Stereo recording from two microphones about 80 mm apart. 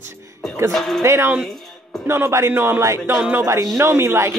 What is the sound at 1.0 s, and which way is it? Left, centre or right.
Speech, right.